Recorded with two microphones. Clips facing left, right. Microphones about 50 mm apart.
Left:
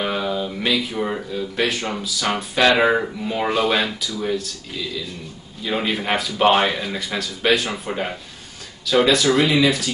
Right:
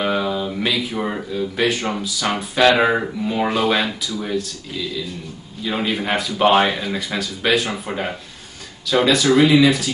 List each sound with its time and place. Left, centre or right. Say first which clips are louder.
0.0 s a sound: right 2 dB; centre
0.9 s speech: right 1 dB; centre
5.6 s speech: right 1 dB; centre